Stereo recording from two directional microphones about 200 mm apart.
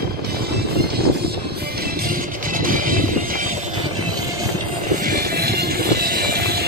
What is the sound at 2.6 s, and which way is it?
Music, 45° right (ahead or behind).